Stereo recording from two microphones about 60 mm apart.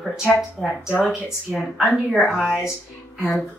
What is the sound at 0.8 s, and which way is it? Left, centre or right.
Speech, centre.